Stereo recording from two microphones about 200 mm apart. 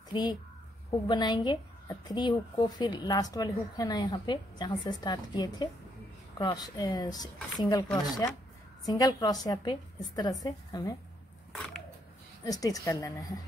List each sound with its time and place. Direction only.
0.1 s a woman's voice: 20° left (ahead or behind)
11.5 s biting: 5° left (ahead or behind)
12.4 s a woman's voice: 20° left (ahead or behind)